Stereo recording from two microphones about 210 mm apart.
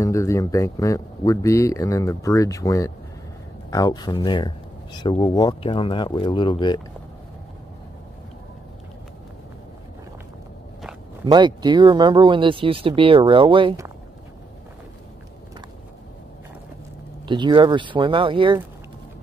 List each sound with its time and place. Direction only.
0.0 s speech: 15° left (ahead or behind)
11.2 s speech: 20° right (ahead or behind)
17.3 s speech: 20° right (ahead or behind)